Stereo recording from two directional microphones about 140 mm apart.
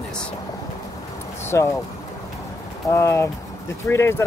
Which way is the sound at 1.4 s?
20° left (ahead or behind).